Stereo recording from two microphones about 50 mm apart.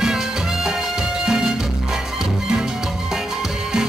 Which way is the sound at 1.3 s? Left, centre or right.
Centre.